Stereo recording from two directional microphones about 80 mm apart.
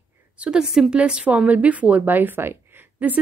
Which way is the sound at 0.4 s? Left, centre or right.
Centre.